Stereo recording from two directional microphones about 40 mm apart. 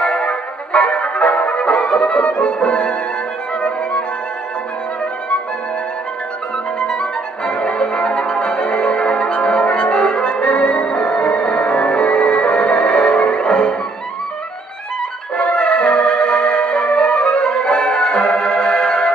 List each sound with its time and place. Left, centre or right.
0.0 s music: left
7.0 s music: left
15.3 s music: left